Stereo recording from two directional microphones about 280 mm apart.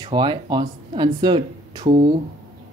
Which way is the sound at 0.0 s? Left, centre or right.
Centre.